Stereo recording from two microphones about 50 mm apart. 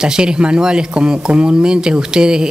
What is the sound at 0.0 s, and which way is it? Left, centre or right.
Speech, centre.